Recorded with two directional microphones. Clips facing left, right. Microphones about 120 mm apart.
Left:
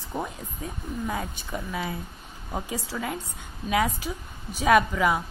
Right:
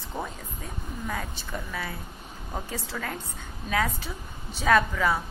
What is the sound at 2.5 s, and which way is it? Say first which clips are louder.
A woman's voice: left 3 dB; 10° left (ahead or behind).